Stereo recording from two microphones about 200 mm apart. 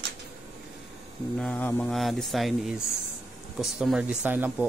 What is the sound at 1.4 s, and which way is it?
Speech, 5° left (ahead or behind).